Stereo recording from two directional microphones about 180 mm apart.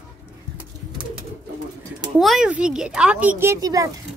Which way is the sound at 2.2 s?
Centre (ahead or behind).